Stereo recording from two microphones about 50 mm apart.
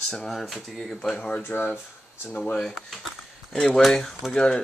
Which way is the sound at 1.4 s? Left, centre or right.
Left.